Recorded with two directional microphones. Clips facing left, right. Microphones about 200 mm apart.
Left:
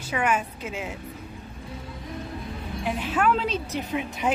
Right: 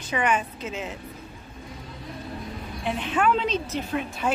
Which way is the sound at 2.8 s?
5° left (ahead or behind).